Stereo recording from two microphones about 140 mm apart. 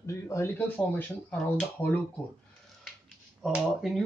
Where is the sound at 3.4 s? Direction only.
5° right (ahead or behind).